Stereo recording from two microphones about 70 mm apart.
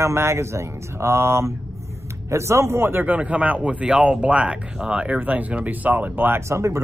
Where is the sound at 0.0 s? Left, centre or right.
Right.